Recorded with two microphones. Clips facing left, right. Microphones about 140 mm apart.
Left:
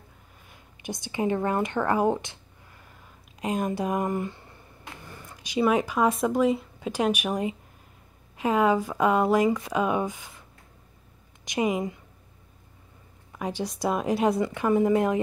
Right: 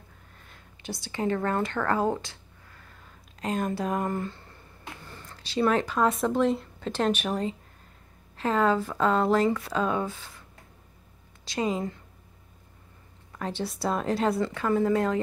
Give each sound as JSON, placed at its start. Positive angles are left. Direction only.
{"t": 0.5, "sound": "speech", "side_deg": 20}
{"t": 5.0, "sound": "a sound", "side_deg": 10}
{"t": 6.2, "sound": "speech", "side_deg": 10}
{"t": 11.4, "sound": "speech", "side_deg": 15}
{"t": 13.3, "sound": "speech", "side_deg": 10}